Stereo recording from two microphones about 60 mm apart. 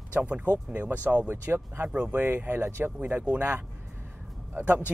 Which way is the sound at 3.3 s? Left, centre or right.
Right.